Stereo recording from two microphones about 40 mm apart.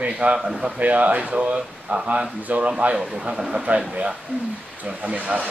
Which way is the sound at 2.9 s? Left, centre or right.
Centre.